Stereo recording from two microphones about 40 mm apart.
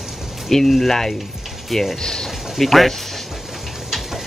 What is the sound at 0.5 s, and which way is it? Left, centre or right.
Speech, centre.